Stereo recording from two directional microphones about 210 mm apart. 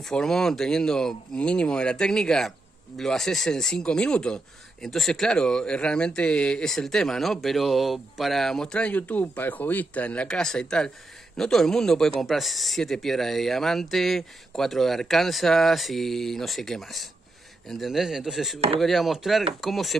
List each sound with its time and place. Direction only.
0.0 s speech: 5° left (ahead or behind)